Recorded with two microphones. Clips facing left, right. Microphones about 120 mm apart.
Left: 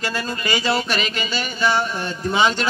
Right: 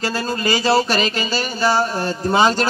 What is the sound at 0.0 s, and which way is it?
Speech, 35° right (ahead or behind).